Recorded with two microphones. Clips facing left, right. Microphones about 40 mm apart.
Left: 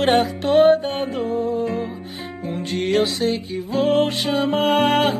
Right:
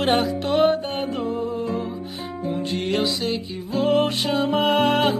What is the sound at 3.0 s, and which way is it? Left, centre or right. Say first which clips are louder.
Music: left 4 dB; left.